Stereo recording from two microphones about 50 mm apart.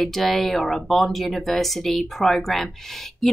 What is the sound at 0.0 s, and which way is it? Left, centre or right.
A woman's voice, centre.